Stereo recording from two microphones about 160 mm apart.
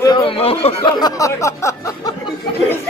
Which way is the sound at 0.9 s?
20° left (ahead or behind).